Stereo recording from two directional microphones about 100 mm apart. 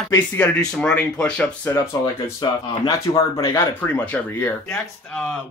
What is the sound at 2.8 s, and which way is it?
Speech, 40° left (ahead or behind).